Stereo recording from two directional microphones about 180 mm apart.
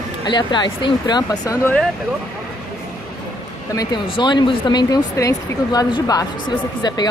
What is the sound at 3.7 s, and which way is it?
Speech, 25° left (ahead or behind).